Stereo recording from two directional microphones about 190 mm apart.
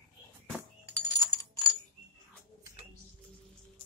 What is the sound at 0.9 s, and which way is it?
Coin, 15° left (ahead or behind).